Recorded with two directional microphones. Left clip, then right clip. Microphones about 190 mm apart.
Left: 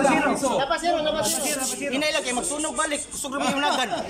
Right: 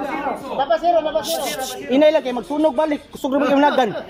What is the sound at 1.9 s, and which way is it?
Speech, 45° right (ahead or behind).